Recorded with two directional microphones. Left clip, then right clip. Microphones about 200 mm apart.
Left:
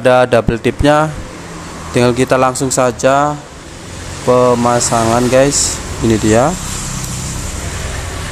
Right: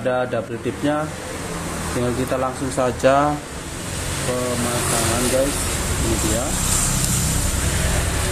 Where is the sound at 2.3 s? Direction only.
25° left (ahead or behind).